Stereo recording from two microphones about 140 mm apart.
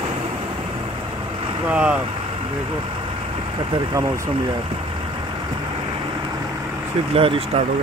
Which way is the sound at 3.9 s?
20° right (ahead or behind).